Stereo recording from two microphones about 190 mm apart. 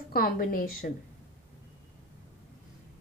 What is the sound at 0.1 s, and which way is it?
Speech, 50° left (ahead or behind).